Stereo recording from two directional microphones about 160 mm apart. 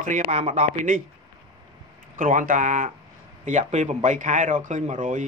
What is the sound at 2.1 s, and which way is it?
Speech, 50° right (ahead or behind).